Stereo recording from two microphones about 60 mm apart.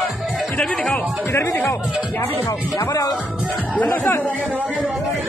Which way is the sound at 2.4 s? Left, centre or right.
Left.